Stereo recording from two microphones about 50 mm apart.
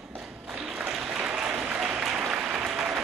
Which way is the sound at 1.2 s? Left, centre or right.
Centre.